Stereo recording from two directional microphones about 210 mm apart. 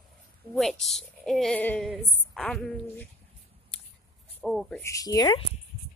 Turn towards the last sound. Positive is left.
turn(degrees=20)  # may be behind; listen again after turning